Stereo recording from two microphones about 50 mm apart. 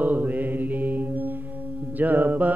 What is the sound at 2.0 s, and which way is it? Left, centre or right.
Mantra, right.